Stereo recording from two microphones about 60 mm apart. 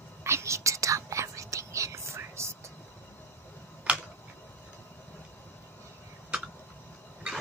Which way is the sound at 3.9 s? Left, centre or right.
Right.